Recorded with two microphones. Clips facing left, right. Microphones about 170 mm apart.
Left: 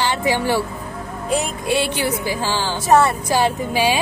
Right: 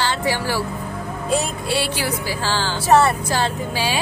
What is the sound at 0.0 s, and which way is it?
Speech, 15° left (ahead or behind).